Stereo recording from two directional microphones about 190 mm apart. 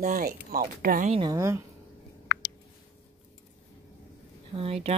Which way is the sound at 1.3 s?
15° right (ahead or behind).